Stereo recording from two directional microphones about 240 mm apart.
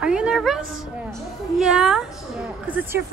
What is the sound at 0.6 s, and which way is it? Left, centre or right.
Speech, right.